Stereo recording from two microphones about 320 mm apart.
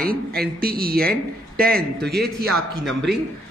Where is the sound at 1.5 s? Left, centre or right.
Right.